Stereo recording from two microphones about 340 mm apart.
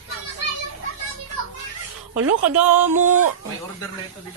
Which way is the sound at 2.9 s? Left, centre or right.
Right.